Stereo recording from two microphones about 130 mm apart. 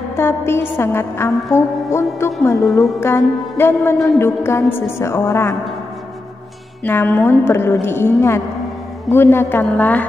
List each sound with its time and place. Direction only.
0.1 s music: 20° left (ahead or behind)
6.8 s music: 15° left (ahead or behind)
9.1 s a man's voice: 20° left (ahead or behind)